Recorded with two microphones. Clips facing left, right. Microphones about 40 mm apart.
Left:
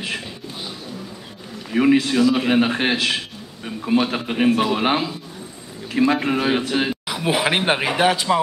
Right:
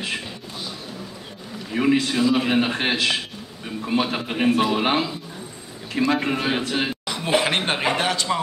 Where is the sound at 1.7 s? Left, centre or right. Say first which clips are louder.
Left 4 dB; centre.